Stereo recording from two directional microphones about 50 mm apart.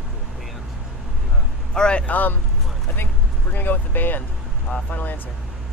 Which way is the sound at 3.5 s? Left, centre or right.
Left.